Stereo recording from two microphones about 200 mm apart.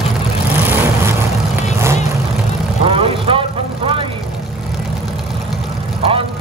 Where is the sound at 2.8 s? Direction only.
25° right (ahead or behind).